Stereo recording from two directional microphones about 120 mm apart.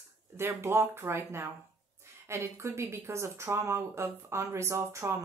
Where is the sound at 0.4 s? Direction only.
20° right (ahead or behind).